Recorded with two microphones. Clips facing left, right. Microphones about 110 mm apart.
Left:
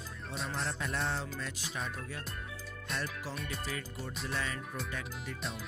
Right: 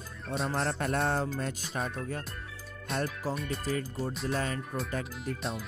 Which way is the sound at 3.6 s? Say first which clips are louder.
Right 8 dB; 40° right (ahead or behind).